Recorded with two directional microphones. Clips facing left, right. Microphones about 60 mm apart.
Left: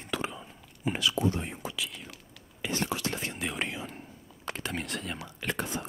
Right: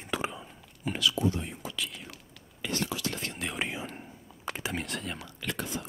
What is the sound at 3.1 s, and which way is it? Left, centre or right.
Whispering, centre.